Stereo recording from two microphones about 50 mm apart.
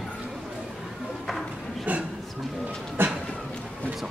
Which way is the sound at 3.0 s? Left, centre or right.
Right.